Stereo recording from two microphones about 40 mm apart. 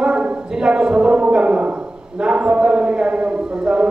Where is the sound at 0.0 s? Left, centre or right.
Right.